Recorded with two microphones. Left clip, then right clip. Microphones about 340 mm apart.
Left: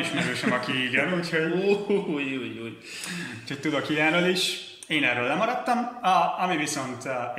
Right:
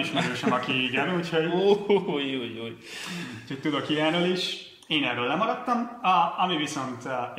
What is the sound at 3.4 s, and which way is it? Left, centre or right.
Speech, centre.